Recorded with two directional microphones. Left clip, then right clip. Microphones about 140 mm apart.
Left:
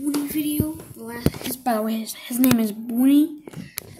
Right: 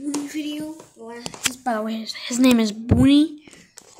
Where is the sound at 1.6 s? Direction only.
Centre (ahead or behind); by 3.3 s 25° right (ahead or behind).